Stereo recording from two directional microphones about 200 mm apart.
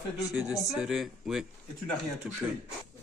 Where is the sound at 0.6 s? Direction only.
Centre (ahead or behind).